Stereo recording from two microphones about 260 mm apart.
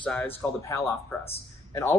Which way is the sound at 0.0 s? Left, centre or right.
Centre.